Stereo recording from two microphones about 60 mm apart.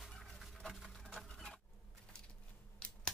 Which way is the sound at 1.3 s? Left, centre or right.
Centre.